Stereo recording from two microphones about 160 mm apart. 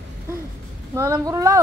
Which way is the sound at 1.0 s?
20° right (ahead or behind).